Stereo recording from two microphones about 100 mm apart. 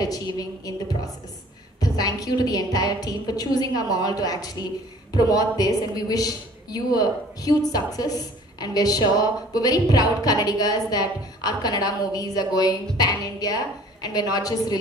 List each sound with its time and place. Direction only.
0.0 s a woman's voice: 40° left (ahead or behind)